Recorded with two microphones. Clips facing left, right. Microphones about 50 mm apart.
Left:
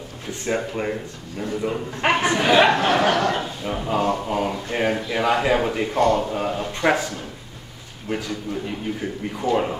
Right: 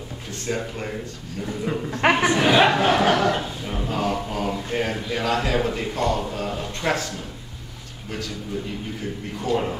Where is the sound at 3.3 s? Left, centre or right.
Centre.